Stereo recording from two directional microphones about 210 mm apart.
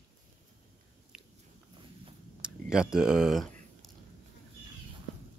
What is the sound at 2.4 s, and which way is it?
Speech, 5° right (ahead or behind).